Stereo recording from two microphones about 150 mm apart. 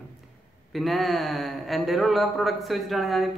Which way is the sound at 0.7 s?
Centre (ahead or behind).